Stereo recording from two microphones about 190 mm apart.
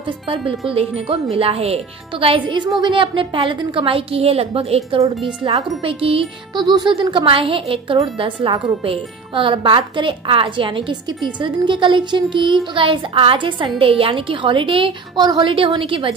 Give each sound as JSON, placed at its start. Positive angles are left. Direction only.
{"t": 0.3, "sound": "speech", "side_deg": -30}